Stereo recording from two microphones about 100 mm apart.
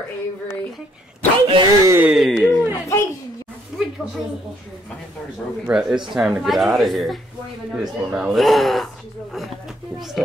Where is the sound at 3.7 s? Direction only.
5° right (ahead or behind).